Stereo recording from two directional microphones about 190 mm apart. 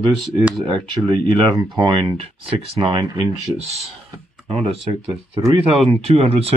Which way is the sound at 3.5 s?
35° right (ahead or behind).